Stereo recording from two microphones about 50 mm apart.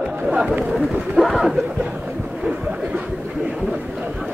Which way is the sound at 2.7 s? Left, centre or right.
Right.